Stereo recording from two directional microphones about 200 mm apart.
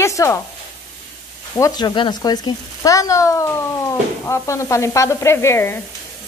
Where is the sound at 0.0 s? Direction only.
15° left (ahead or behind).